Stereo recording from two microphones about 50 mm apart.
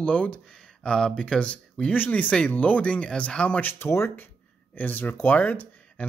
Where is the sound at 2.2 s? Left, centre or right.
Left.